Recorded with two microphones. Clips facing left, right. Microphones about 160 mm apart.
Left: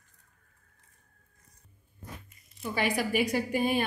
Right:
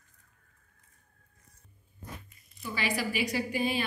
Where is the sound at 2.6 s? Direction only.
50° left (ahead or behind).